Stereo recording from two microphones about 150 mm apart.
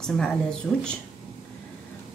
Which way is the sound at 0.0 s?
5° left (ahead or behind).